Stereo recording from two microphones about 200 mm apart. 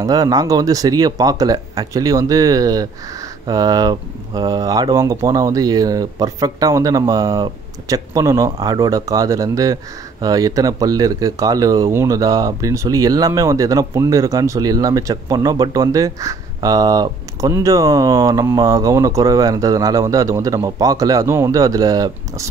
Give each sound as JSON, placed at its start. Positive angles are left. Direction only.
{"t": 0.0, "sound": "speech", "side_deg": -20}